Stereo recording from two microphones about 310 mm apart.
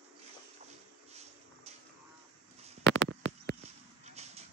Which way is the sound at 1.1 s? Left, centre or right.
Right.